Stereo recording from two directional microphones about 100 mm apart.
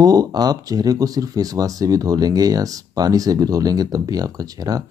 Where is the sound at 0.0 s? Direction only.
40° right (ahead or behind).